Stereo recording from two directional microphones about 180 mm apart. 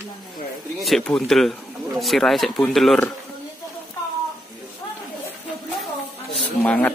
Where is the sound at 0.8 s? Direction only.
5° left (ahead or behind).